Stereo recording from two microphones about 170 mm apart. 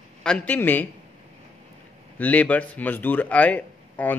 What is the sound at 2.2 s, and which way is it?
A man's voice, 10° left (ahead or behind).